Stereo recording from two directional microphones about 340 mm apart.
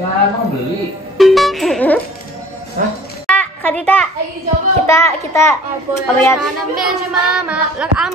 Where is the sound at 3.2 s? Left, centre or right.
Centre.